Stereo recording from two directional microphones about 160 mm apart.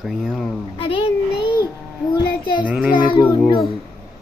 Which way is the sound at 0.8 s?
35° left (ahead or behind).